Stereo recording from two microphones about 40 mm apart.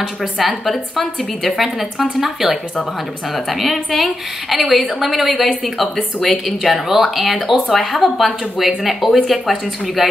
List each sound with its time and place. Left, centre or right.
0.2 s a woman's voice: centre
0.7 s speech: centre
5.9 s speech: centre
6.4 s speech: centre